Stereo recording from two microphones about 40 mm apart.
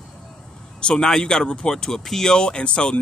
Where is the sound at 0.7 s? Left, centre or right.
Centre.